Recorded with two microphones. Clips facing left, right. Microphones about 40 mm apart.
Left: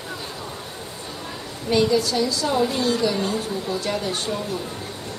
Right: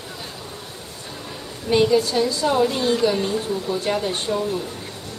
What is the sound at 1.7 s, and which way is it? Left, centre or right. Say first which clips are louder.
A woman's voice: right 2 dB; right.